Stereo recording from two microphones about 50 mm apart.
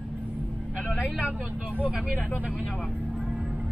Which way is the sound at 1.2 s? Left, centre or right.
Right.